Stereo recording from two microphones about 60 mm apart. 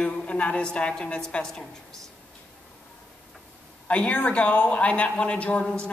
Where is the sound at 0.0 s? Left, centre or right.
Centre.